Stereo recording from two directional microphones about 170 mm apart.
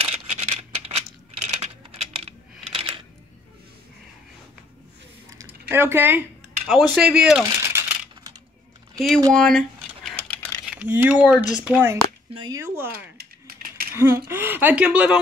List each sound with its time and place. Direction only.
0.0 s a sound: 35° right (ahead or behind)
1.6 s typing: 35° right (ahead or behind)
5.7 s speech: 15° right (ahead or behind)
7.4 s coin: 15° right (ahead or behind)
8.9 s speech: centre (ahead or behind)
9.3 s a sound: 5° left (ahead or behind)
12.4 s speech: 20° right (ahead or behind)
13.2 s a sound: 60° right (ahead or behind)
13.9 s speech: 15° right (ahead or behind)